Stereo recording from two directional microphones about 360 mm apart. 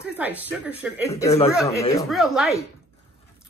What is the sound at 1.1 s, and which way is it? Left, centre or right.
Speech, centre.